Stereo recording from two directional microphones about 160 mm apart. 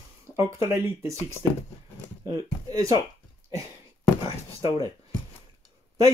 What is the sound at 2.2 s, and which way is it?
Speech, 20° right (ahead or behind).